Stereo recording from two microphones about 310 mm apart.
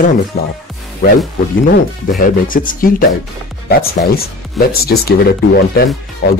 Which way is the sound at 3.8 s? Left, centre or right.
Left.